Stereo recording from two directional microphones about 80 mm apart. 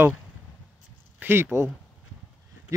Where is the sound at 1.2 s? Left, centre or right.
Right.